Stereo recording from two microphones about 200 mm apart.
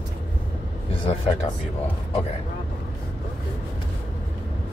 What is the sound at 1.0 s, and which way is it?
Speech, 30° left (ahead or behind).